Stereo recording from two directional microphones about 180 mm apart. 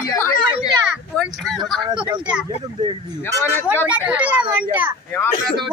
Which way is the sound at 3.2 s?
15° left (ahead or behind).